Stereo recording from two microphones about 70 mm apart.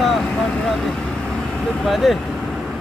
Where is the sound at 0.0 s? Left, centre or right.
Centre.